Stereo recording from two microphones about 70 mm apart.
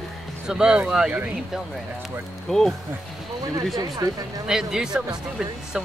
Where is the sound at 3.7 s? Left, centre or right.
Right.